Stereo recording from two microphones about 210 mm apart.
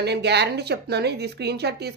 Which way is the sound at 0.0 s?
55° right (ahead or behind).